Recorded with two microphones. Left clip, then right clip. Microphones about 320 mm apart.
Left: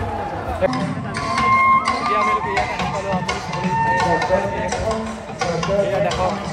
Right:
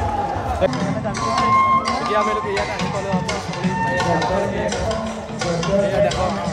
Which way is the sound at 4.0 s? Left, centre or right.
Centre.